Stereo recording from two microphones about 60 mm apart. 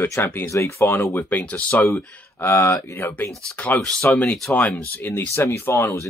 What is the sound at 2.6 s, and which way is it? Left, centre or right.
Speech, left.